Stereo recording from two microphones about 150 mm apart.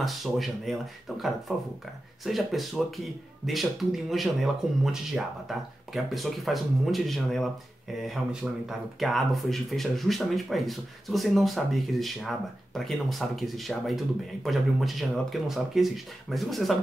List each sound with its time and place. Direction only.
0.0 s speech: centre (ahead or behind)